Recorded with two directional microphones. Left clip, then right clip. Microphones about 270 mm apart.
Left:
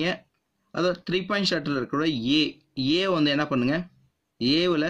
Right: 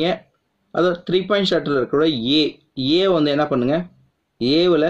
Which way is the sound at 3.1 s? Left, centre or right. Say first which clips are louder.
Right 6 dB; left.